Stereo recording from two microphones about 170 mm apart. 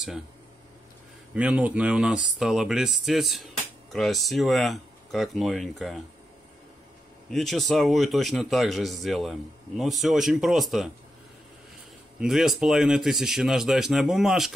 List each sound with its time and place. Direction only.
1.3 s speech: 10° right (ahead or behind)
7.2 s speech: centre (ahead or behind)
12.2 s speech: centre (ahead or behind)